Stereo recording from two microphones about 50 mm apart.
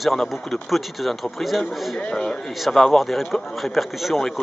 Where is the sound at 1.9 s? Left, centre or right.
Centre.